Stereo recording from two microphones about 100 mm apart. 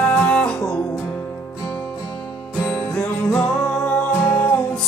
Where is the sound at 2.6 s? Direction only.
10° left (ahead or behind).